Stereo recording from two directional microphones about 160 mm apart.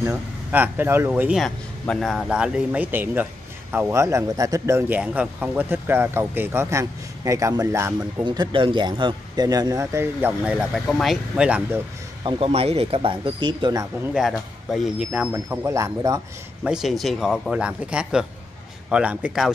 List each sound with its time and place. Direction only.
0.0 s speech: 15° right (ahead or behind)
1.4 s a man's voice: centre (ahead or behind); by 7.9 s 15° right (ahead or behind)
8.3 s speech: 30° right (ahead or behind); by 11.8 s 5° right (ahead or behind)
12.3 s speech: 35° right (ahead or behind)
14.1 s a man's voice: centre (ahead or behind)
15.0 s speech: 15° right (ahead or behind)
16.6 s a man's voice: centre (ahead or behind)